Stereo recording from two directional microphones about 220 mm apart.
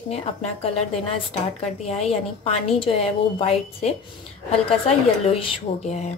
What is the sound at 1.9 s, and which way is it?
A woman's voice, 30° left (ahead or behind).